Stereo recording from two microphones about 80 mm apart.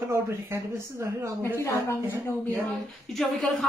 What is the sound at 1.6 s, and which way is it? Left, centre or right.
Speech, left.